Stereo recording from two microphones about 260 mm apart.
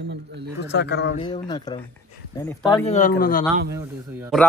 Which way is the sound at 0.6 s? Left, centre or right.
Left.